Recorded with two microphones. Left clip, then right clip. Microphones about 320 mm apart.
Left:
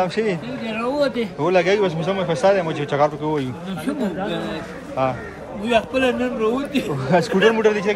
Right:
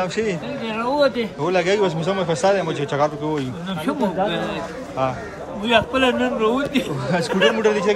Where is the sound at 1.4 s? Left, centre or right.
Centre.